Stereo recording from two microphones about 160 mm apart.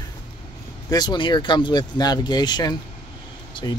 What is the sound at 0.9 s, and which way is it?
Speech, 25° left (ahead or behind).